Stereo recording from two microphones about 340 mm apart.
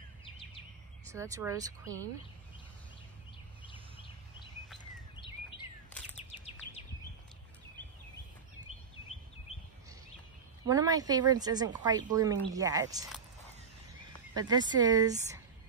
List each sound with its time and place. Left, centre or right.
1.1 s speech: centre
5.1 s a sound: centre
6.3 s bird vocalization: centre
10.7 s speech: centre
14.3 s speech: centre